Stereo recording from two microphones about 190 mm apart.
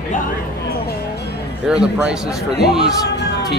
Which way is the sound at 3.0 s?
60° left (ahead or behind).